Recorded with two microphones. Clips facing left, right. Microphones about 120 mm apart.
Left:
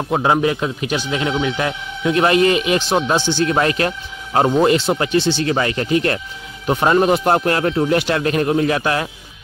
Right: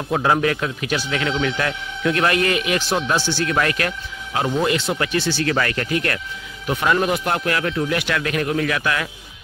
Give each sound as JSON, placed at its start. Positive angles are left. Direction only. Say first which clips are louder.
{"t": 0.1, "sound": "speech", "louder": "left 2 dB", "side_deg": 20}
{"t": 4.3, "sound": "speech", "louder": "left 7 dB", "side_deg": 40}
{"t": 4.6, "sound": "speech", "louder": "left 3 dB", "side_deg": 30}